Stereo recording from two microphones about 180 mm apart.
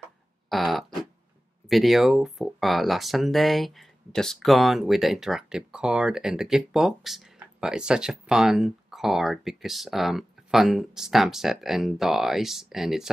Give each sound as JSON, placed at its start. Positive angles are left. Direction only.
{"t": 0.5, "sound": "fart", "side_deg": 0}
{"t": 1.7, "sound": "speech", "side_deg": 0}